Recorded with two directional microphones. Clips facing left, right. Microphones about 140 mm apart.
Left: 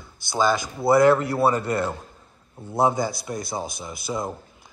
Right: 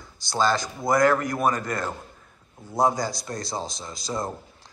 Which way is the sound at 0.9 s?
25° left (ahead or behind).